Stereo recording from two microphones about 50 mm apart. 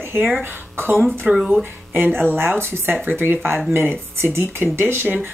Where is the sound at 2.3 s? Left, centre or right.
Right.